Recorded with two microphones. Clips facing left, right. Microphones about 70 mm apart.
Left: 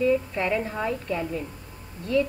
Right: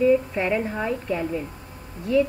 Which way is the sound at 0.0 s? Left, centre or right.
Centre.